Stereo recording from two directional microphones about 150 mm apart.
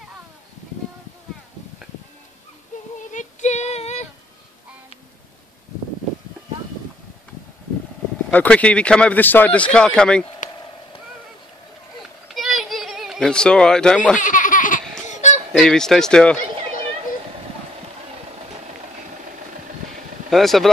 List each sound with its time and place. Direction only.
3.1 s female singing: 55° left (ahead or behind)
8.3 s a man's voice: 10° left (ahead or behind)
12.4 s a sound: centre (ahead or behind)
14.2 s baby laughter: 60° left (ahead or behind)
15.5 s speech: 5° left (ahead or behind)
20.2 s speech: centre (ahead or behind)